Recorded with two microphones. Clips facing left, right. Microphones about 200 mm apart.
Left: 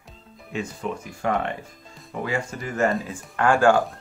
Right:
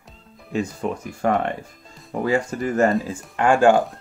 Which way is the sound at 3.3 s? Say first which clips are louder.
Right 2 dB; 20° right (ahead or behind).